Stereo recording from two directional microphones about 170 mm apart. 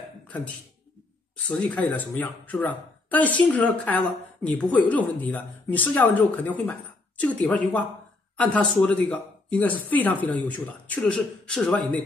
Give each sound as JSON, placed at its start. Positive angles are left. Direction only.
{"t": 1.5, "sound": "speech", "side_deg": 5}